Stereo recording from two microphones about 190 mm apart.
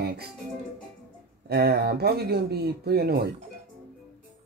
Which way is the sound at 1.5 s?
60° right (ahead or behind).